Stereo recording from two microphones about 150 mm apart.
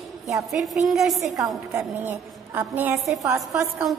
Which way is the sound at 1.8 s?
10° right (ahead or behind).